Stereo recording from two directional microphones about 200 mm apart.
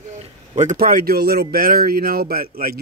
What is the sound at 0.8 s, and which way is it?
Speech, 45° right (ahead or behind).